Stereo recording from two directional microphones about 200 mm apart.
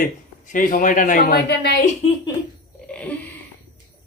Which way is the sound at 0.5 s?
45° left (ahead or behind).